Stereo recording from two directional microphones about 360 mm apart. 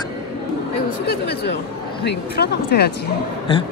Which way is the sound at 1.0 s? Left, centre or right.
Left.